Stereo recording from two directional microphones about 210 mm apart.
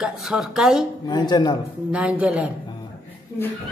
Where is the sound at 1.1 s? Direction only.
20° left (ahead or behind).